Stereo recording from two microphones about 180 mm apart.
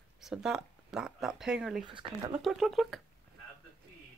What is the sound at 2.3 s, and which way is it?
Speech, centre (ahead or behind).